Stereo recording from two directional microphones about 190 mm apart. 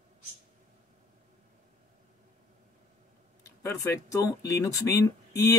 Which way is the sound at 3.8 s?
15° left (ahead or behind).